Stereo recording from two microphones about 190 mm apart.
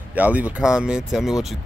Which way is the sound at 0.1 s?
10° right (ahead or behind).